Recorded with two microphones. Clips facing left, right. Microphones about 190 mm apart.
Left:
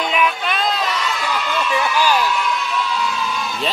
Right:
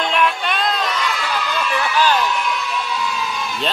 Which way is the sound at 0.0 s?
5° left (ahead or behind).